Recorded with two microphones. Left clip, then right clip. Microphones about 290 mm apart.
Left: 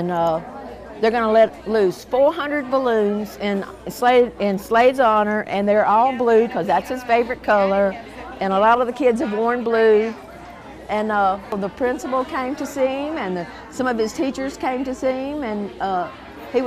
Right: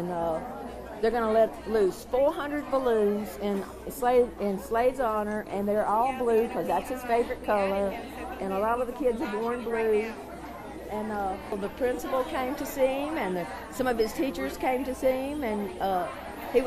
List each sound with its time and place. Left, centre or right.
0.1 s speech: left
8.5 s speech: left
10.9 s speech: left
11.8 s speech: left